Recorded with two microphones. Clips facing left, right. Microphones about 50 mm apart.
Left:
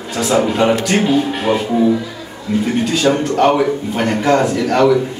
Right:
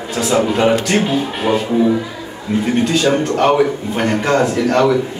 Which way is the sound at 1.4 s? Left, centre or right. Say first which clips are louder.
Right 3 dB; centre.